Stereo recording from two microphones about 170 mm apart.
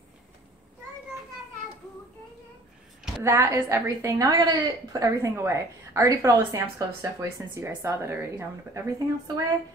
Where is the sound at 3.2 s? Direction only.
15° right (ahead or behind).